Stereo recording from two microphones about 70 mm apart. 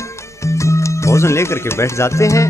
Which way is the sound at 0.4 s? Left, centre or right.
Left.